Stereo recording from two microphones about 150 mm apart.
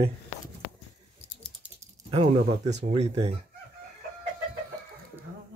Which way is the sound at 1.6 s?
10° right (ahead or behind).